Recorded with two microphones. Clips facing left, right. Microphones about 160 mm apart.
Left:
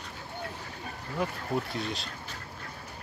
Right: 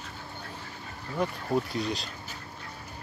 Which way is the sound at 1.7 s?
Centre (ahead or behind).